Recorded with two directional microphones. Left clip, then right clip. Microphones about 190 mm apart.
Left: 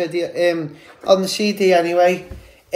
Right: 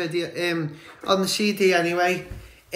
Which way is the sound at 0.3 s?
15° right (ahead or behind).